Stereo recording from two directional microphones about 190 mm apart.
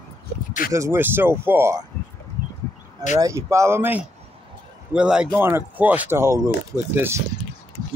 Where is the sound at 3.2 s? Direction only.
15° right (ahead or behind).